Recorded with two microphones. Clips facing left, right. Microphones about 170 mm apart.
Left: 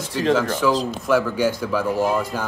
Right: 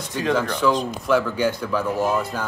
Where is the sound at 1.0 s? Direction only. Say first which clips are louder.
Left 1 dB; 10° left (ahead or behind).